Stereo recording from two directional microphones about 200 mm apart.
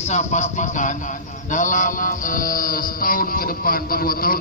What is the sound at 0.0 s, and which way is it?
A man's voice, 35° left (ahead or behind).